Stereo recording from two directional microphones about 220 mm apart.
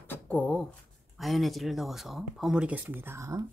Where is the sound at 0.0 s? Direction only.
10° left (ahead or behind).